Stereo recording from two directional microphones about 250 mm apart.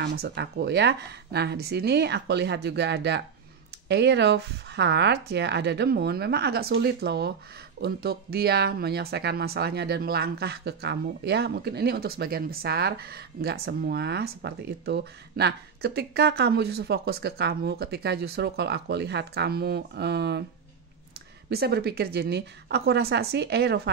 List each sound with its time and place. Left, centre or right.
0.0 s speech: right
21.5 s speech: right